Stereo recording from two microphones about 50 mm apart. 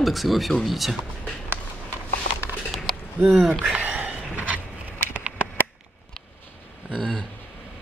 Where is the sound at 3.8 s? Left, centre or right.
Right.